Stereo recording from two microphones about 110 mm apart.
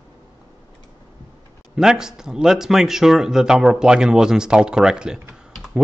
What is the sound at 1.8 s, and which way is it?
A man's voice, 5° right (ahead or behind).